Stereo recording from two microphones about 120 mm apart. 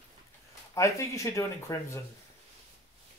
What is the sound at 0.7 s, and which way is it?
Speech, 25° left (ahead or behind).